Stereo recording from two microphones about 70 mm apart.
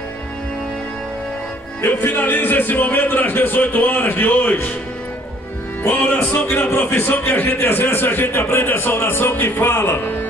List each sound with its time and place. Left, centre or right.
1.8 s a man's voice: left
5.9 s a man's voice: left